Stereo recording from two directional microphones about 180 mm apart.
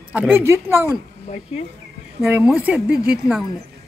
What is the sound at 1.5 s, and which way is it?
Speech, 35° left (ahead or behind).